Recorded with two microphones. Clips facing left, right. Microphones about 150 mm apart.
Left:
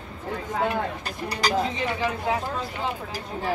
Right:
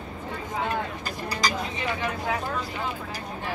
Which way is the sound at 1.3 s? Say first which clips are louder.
Left 2 dB; 65° left (ahead or behind).